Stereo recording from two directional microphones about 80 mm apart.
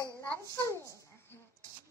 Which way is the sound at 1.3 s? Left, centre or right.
Left.